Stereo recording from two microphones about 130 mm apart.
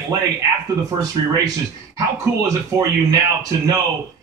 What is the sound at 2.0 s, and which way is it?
A man's voice, 25° right (ahead or behind).